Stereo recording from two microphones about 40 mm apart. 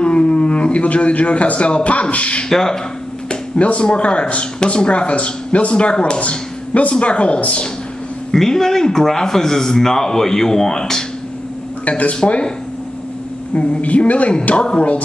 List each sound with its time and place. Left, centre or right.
0.0 s speech: left
2.5 s a man's voice: centre
3.3 s a woman's voice: left
8.3 s a man's voice: centre
12.2 s speech: left
13.6 s a woman's voice: left